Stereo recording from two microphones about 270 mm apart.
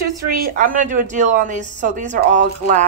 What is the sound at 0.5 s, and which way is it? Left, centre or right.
Speech, right.